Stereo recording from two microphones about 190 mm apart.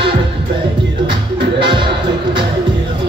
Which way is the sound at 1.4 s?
25° right (ahead or behind).